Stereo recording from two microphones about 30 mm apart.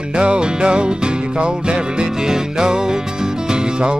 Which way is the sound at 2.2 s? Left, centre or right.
Right.